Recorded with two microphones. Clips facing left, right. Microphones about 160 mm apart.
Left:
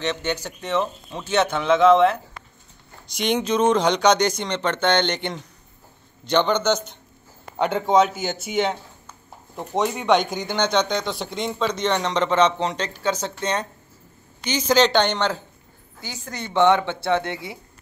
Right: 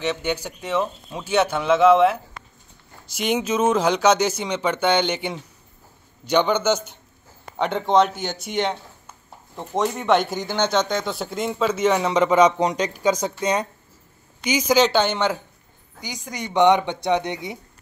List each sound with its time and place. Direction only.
0.0 s speech: 10° right (ahead or behind)
7.5 s speech: centre (ahead or behind); by 17.6 s 20° right (ahead or behind)